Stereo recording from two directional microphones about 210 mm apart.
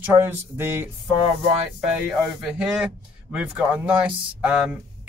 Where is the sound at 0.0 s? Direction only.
10° right (ahead or behind).